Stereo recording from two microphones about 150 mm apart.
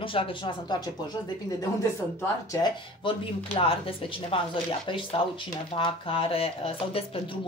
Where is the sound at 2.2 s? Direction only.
20° left (ahead or behind).